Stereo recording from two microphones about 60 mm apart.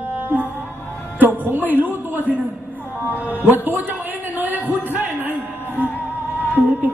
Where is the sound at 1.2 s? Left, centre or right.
Right.